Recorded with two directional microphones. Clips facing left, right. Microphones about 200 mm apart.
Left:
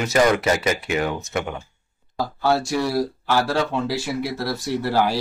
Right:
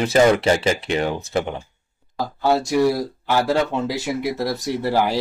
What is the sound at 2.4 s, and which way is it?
Speech, 20° right (ahead or behind).